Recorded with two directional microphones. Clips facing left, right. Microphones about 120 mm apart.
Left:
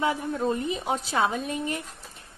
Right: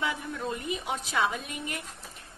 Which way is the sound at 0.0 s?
35° left (ahead or behind).